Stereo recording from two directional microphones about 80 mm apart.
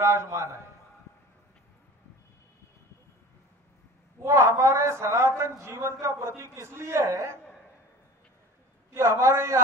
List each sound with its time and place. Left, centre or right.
0.0 s a man's voice: right
4.2 s a man's voice: right
8.9 s a man's voice: right